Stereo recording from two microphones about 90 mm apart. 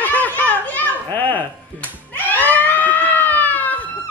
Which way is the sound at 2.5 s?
20° left (ahead or behind).